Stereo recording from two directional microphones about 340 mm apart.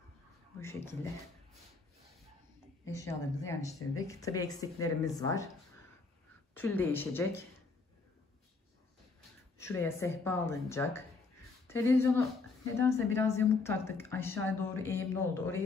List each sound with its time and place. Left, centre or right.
0.6 s a woman's voice: centre
2.9 s a woman's voice: centre
6.5 s speech: centre
9.6 s a woman's voice: centre